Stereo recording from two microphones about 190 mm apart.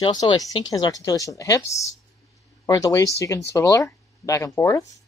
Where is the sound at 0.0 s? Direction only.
25° left (ahead or behind).